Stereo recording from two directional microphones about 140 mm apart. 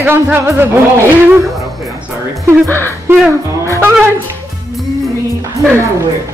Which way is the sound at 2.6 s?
15° left (ahead or behind).